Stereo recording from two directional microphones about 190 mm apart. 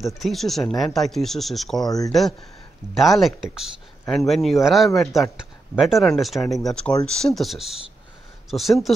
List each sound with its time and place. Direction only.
0.0 s speech: centre (ahead or behind)
1.9 s speech: 20° left (ahead or behind)
2.9 s speech: centre (ahead or behind)
4.0 s speech: 10° left (ahead or behind)
4.3 s speech: centre (ahead or behind)